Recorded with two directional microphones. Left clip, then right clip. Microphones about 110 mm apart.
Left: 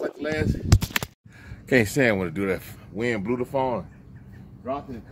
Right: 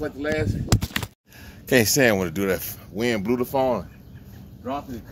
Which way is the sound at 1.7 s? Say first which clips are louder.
Right 2 dB; 30° left (ahead or behind).